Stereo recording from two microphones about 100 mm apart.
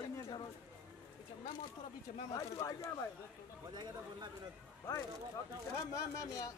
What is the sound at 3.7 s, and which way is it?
Speech, 50° right (ahead or behind).